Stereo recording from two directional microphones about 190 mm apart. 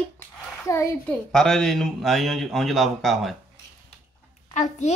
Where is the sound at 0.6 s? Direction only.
15° left (ahead or behind).